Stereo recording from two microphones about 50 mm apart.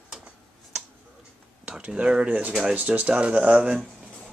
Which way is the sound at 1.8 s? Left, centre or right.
Right.